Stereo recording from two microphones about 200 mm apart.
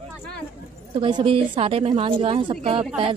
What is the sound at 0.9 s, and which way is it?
A woman's voice, 25° right (ahead or behind).